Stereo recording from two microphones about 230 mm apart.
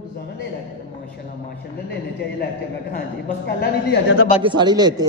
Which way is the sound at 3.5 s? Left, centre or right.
Left.